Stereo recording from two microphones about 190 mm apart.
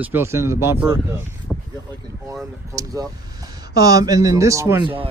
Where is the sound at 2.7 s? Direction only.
20° right (ahead or behind).